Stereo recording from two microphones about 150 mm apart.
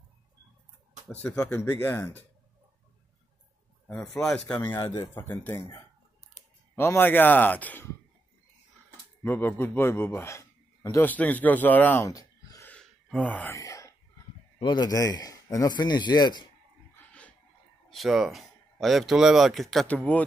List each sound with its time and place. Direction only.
1.0 s speech: 5° left (ahead or behind)
4.2 s speech: 5° left (ahead or behind)
4.6 s speech: 25° left (ahead or behind)
6.7 s speech: 15° left (ahead or behind)
9.2 s a man's voice: 15° left (ahead or behind)
11.1 s speech: 10° left (ahead or behind)
12.1 s a sound: 20° left (ahead or behind)
12.6 s gasp: 10° left (ahead or behind)
13.6 s a sound: 20° left (ahead or behind)
14.6 s speech: 30° left (ahead or behind)
16.9 s a sound: 10° left (ahead or behind)
17.8 s speech: centre (ahead or behind)